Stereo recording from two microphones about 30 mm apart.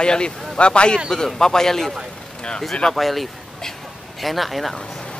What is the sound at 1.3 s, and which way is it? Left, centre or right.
Speech, centre.